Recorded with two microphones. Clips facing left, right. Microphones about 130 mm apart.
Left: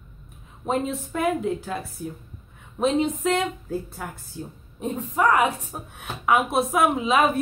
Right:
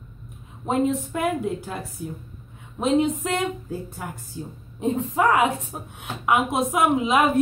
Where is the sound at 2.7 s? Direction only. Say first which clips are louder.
Right 1 dB; 10° right (ahead or behind).